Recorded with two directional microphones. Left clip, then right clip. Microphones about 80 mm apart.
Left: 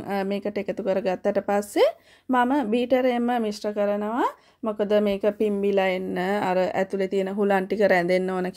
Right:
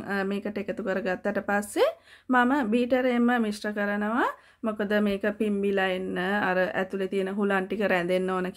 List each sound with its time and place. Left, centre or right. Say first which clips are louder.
0.1 s speech: left 3 dB; left
2.3 s speech: left 1 dB; centre
2.7 s speech: left 3 dB; left
3.6 s speech: left 4 dB; centre; by 7.4 s left
7.4 s speech: left 7 dB; left